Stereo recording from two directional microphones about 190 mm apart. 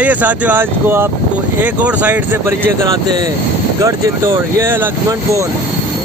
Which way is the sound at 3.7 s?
15° right (ahead or behind).